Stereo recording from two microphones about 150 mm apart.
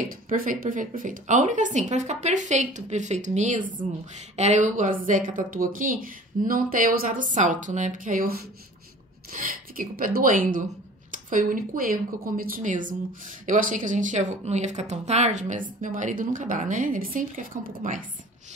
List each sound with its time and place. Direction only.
0.0 s speech: 65° right (ahead or behind)